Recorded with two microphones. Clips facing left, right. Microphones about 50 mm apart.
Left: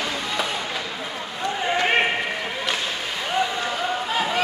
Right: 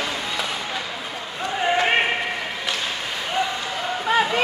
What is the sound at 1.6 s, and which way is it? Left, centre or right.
Basketball bounce, centre.